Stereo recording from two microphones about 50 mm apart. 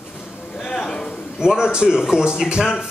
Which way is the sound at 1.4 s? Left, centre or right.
Centre.